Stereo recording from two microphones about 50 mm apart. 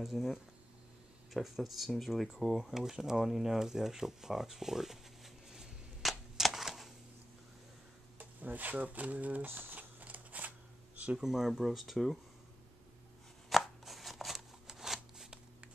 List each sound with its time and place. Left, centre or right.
0.0 s speech: centre
2.8 s a sound: centre
8.2 s speech: right
9.5 s speech: right
9.8 s a sound: right
11.1 s speech: centre
13.5 s scissors: centre